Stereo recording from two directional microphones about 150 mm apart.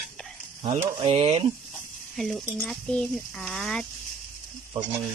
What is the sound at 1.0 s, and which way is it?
Speech, 40° right (ahead or behind).